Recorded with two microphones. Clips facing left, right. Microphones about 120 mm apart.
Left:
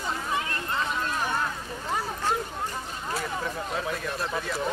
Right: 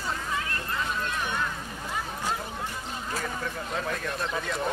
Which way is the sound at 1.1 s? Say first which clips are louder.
Left 2 dB; 40° left (ahead or behind).